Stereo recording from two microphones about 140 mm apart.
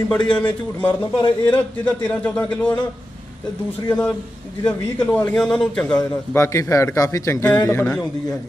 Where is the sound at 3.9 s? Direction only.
10° left (ahead or behind).